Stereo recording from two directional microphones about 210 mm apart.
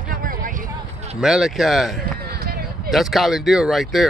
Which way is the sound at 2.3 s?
45° right (ahead or behind).